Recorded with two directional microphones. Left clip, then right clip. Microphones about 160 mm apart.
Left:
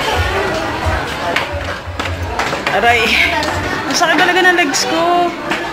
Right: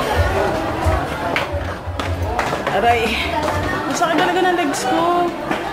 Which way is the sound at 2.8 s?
5° right (ahead or behind).